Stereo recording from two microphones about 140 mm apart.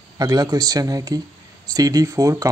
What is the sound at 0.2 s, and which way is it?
Speech, 25° right (ahead or behind).